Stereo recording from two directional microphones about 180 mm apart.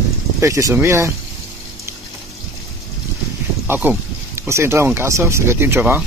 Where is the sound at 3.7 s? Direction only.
10° right (ahead or behind).